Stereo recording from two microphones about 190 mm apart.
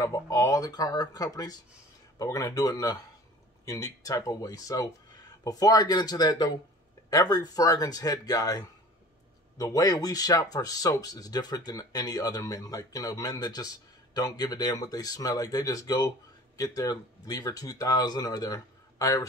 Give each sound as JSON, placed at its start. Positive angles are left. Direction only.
{"t": 0.0, "sound": "speech", "side_deg": 20}